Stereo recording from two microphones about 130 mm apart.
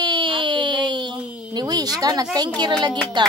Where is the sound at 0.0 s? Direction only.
40° right (ahead or behind).